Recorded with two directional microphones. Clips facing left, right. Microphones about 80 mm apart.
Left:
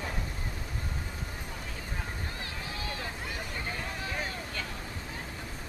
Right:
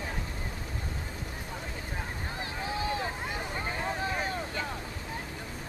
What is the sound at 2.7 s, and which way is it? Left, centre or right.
Vehicle, right.